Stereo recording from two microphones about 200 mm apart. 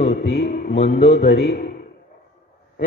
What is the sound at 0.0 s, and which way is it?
A man's voice, 50° left (ahead or behind).